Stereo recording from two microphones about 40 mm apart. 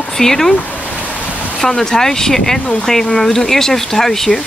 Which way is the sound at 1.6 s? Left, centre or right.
Centre.